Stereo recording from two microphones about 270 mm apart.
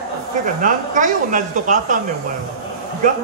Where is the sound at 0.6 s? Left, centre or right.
Right.